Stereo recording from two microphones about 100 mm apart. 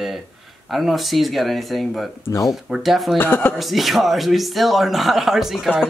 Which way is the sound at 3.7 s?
Centre (ahead or behind).